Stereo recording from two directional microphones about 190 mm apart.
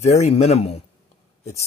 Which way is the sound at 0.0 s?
35° left (ahead or behind).